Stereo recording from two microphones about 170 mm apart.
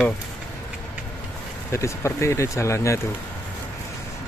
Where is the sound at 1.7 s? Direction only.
15° left (ahead or behind).